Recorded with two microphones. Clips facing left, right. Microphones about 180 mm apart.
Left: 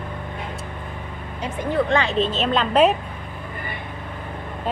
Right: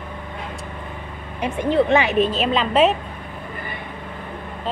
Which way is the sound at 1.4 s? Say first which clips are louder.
Right 4 dB; 15° right (ahead or behind).